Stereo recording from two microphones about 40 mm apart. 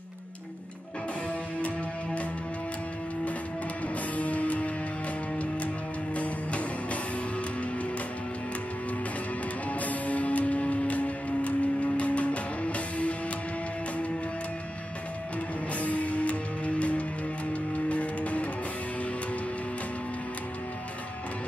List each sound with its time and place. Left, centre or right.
4.2 s music: left
6.1 s music: left
9.7 s music: left
15.8 s music: left